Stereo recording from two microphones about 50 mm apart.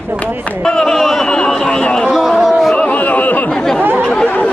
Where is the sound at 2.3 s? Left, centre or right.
Centre.